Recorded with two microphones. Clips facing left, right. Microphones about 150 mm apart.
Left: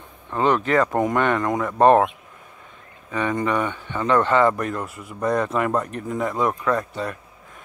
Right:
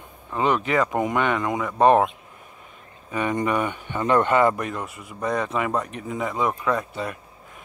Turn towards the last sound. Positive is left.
turn(degrees=-10)  # may be behind; listen again after turning